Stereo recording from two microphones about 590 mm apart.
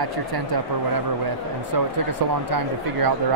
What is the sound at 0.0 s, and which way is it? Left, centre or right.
Speech, right.